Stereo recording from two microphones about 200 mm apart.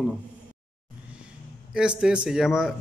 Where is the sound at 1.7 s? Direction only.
5° right (ahead or behind).